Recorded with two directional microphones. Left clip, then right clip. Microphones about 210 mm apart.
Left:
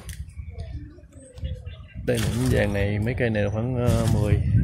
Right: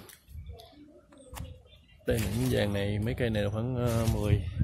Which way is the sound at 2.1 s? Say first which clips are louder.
Left 6 dB; centre (ahead or behind).